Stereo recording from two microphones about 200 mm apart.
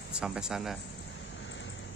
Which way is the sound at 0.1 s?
5° right (ahead or behind).